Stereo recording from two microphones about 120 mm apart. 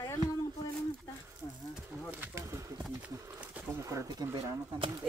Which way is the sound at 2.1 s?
20° right (ahead or behind).